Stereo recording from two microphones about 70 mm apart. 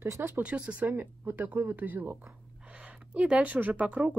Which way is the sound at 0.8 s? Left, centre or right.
Right.